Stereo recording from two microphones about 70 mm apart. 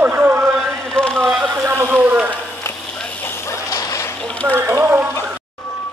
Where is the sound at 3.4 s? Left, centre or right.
Left.